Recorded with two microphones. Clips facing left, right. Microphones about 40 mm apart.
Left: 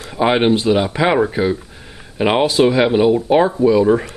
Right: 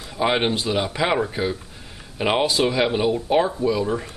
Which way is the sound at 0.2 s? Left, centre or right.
Centre.